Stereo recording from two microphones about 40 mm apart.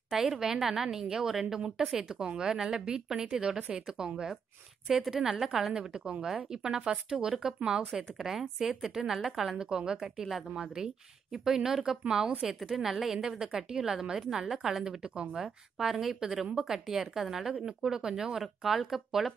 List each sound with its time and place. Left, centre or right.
0.1 s a woman's voice: centre
4.8 s a woman's voice: centre
7.9 s a woman's voice: centre
13.0 s a woman's voice: centre
18.4 s a woman's voice: centre